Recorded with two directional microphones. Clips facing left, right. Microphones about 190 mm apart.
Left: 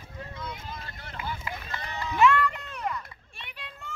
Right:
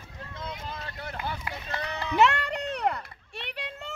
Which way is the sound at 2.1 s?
70° right (ahead or behind).